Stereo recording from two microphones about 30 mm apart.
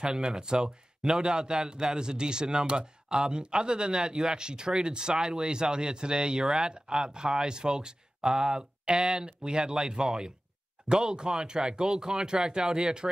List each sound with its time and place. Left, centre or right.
0.0 s speech: right